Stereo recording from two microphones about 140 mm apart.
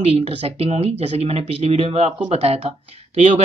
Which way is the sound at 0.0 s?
45° right (ahead or behind).